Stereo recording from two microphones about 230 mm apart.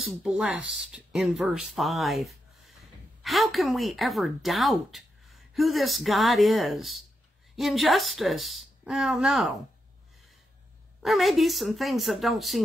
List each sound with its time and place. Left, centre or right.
0.0 s a woman's voice: centre
11.0 s a woman's voice: centre